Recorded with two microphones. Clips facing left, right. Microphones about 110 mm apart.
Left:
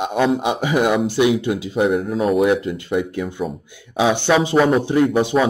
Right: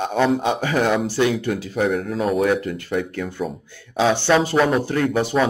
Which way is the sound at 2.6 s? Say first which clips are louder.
Left 3 dB; 20° left (ahead or behind).